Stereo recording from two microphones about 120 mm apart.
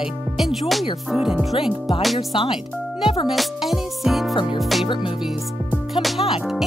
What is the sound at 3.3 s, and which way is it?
Speech, centre (ahead or behind).